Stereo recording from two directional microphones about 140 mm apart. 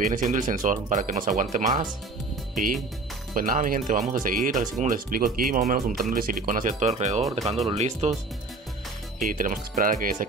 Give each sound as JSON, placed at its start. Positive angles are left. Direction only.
{"t": 0.1, "sound": "speech", "side_deg": -70}
{"t": 3.3, "sound": "speech", "side_deg": -75}
{"t": 9.2, "sound": "speech", "side_deg": -80}